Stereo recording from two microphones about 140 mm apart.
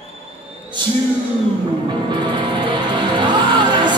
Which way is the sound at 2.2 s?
35° right (ahead or behind).